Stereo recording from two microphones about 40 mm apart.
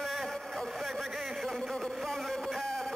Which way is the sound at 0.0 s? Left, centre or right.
Centre.